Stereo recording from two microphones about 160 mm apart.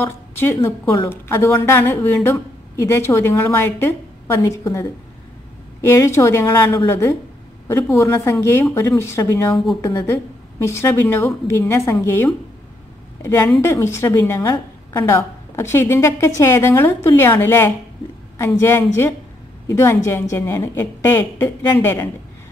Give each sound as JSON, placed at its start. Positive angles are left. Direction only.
{"t": 0.0, "sound": "a woman's voice", "side_deg": 15}
{"t": 5.9, "sound": "a woman's voice", "side_deg": 20}